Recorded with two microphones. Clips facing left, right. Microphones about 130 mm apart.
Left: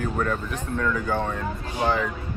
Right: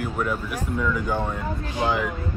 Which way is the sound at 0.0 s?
10° right (ahead or behind).